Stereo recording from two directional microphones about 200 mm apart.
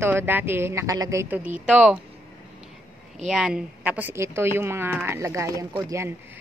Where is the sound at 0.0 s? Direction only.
10° right (ahead or behind).